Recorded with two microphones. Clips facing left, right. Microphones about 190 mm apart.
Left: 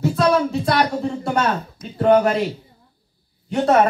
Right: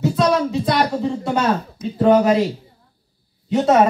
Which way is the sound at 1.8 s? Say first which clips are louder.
Even; centre (ahead or behind).